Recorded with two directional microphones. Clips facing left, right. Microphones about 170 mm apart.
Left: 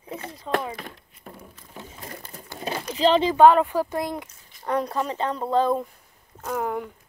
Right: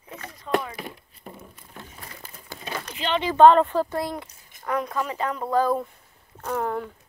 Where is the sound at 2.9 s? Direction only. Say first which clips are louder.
Left 8 dB; 35° left (ahead or behind).